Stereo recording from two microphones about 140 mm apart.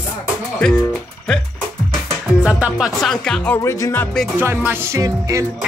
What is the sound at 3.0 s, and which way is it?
Speech, 5° left (ahead or behind).